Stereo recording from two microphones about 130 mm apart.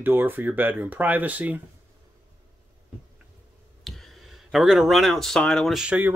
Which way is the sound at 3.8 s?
Centre (ahead or behind).